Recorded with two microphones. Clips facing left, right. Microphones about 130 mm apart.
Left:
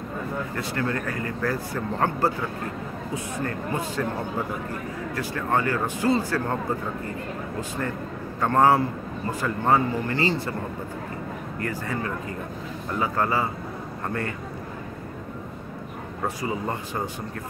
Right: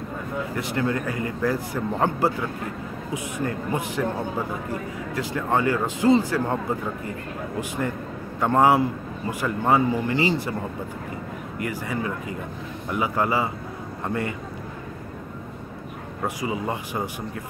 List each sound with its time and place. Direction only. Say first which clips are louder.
0.6 s a man's voice: right 3 dB; 20° right (ahead or behind)
3.4 s a man's voice: right 3 dB; 15° right (ahead or behind)
5.1 s a man's voice: right 2 dB; 15° right (ahead or behind)
8.4 s a man's voice: right 1 dB; 15° right (ahead or behind)
11.5 s a man's voice: right 2 dB; 15° right (ahead or behind)
16.3 s a man's voice: right 3 dB; 15° right (ahead or behind)